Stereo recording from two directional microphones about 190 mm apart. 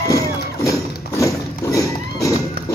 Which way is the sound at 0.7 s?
15° left (ahead or behind).